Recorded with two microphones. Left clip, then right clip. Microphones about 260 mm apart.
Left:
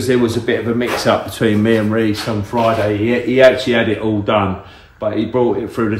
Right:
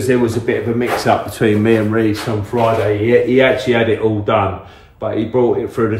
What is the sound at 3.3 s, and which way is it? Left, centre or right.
Speech, left.